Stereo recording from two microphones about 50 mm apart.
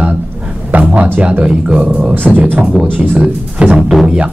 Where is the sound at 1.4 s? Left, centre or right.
Centre.